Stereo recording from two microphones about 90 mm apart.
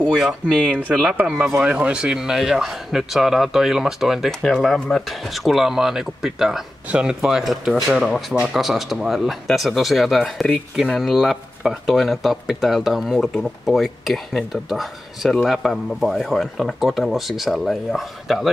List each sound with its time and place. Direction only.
0.1 s speech: 5° right (ahead or behind)
0.7 s speech: 20° right (ahead or behind); by 18.5 s centre (ahead or behind)